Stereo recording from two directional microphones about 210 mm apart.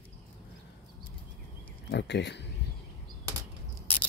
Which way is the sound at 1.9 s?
55° left (ahead or behind).